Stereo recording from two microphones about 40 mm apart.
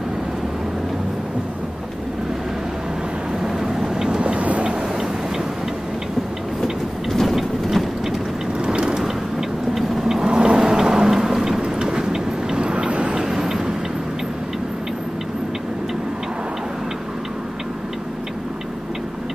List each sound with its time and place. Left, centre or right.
3.4 s vehicle: centre
4.2 s vehicle: right
6.6 s train: centre
7.3 s ratchet: centre
8.5 s vehicle: right
9.8 s vehicle: centre
10.3 s vehicle: right
13.2 s vehicle: centre